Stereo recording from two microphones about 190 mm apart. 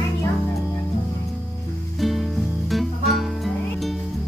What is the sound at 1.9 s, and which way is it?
Music, centre (ahead or behind).